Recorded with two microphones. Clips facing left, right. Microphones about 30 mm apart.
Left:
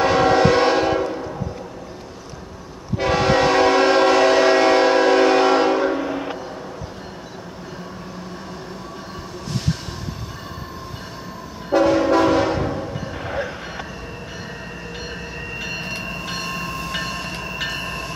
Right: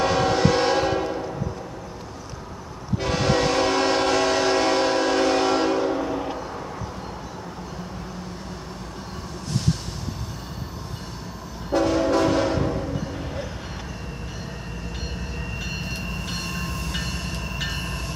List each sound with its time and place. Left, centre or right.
0.0 s train: centre
3.0 s train: centre
11.7 s train horn: centre
13.2 s vehicle: left
15.6 s train: centre